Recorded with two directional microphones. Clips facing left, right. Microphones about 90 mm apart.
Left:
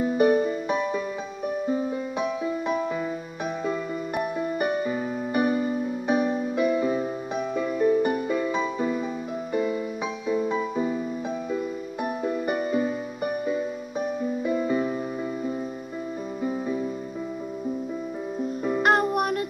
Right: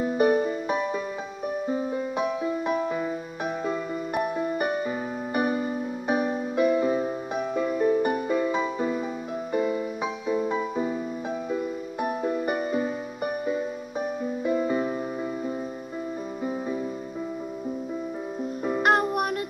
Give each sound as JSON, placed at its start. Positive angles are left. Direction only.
{"t": 0.2, "sound": "music", "side_deg": -25}
{"t": 2.9, "sound": "music", "side_deg": -25}
{"t": 12.0, "sound": "music", "side_deg": -30}
{"t": 18.6, "sound": "music", "side_deg": -15}